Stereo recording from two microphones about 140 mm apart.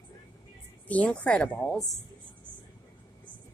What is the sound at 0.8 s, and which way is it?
Speech, 10° left (ahead or behind).